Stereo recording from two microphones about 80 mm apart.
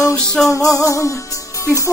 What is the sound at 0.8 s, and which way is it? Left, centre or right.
Music, left.